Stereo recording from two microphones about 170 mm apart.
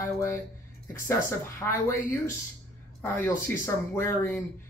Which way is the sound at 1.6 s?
15° left (ahead or behind).